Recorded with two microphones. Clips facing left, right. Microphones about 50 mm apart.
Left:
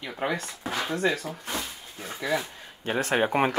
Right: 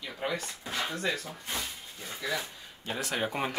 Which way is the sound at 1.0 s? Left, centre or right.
Left.